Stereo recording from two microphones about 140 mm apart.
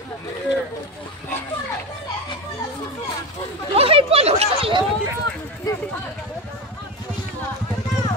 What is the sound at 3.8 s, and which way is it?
Speech, 40° right (ahead or behind).